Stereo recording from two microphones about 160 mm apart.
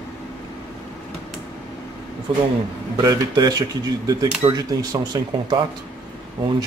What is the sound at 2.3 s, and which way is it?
Speech, 30° right (ahead or behind).